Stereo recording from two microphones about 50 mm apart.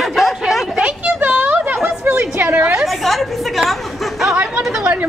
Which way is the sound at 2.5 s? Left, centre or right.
Right.